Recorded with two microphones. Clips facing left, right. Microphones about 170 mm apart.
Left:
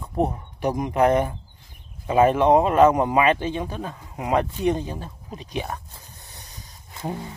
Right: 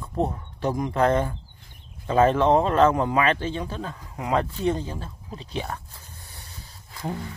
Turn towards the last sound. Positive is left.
turn(degrees=20)  # may be behind; listen again after turning